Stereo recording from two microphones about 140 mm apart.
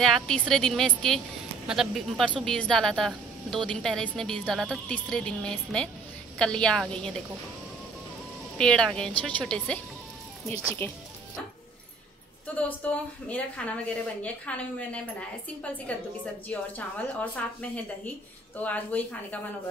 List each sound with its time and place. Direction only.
0.0 s a woman's voice: 5° left (ahead or behind)
8.5 s a woman's voice: 5° left (ahead or behind)
10.8 s a woman's voice: 20° left (ahead or behind)
12.5 s a woman's voice: 10° left (ahead or behind)